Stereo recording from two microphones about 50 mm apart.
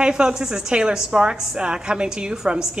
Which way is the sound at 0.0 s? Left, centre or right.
Centre.